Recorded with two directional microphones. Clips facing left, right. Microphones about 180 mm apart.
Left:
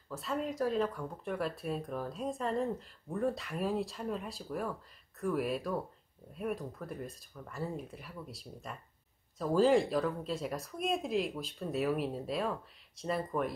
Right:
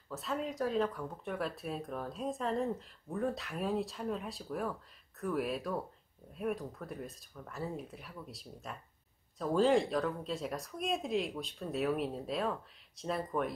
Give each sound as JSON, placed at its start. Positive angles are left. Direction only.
{"t": 0.1, "sound": "speech", "side_deg": 0}